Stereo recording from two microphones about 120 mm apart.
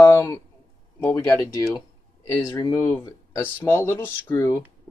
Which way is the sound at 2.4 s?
35° left (ahead or behind).